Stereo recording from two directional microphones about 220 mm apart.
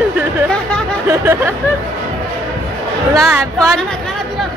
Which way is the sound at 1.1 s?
10° right (ahead or behind).